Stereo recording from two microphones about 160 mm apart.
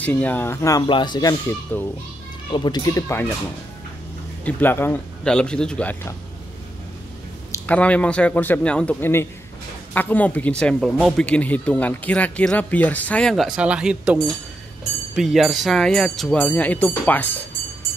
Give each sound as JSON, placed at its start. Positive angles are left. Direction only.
{"t": 0.0, "sound": "speech", "side_deg": 10}
{"t": 1.7, "sound": "speech", "side_deg": 10}
{"t": 2.5, "sound": "speech", "side_deg": 25}
{"t": 4.5, "sound": "speech", "side_deg": 10}
{"t": 7.5, "sound": "speech", "side_deg": 10}
{"t": 15.1, "sound": "speech", "side_deg": 0}